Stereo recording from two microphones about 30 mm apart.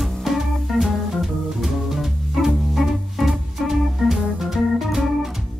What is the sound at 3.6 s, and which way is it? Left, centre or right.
Organ, centre.